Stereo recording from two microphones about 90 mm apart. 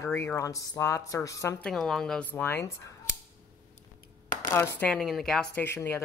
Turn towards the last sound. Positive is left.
turn(degrees=25)  # may be behind; listen again after turning